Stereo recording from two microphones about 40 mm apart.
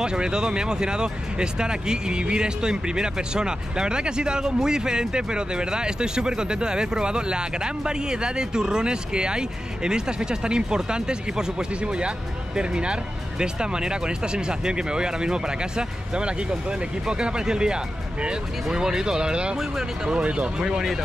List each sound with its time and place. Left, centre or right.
0.0 s speech: centre
20.6 s speech: centre